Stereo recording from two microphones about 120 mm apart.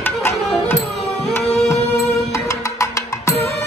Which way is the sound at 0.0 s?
20° left (ahead or behind).